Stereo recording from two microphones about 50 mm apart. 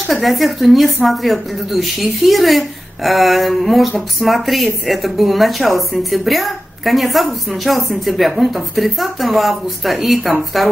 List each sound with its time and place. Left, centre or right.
0.0 s speech: centre